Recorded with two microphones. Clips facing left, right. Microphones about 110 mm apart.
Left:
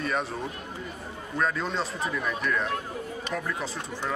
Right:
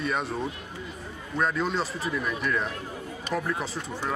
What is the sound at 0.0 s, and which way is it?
Speech, centre (ahead or behind).